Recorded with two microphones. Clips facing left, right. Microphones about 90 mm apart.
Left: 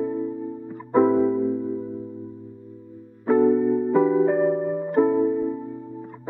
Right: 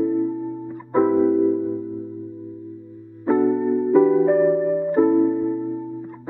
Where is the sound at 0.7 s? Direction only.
Centre (ahead or behind).